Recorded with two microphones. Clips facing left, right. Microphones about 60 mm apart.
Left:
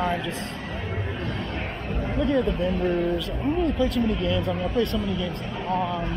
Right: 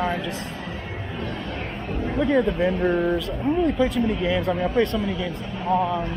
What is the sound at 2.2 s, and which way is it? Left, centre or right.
Speech, right.